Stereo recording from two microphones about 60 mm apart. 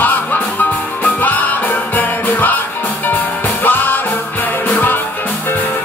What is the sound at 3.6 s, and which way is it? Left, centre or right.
Music, left.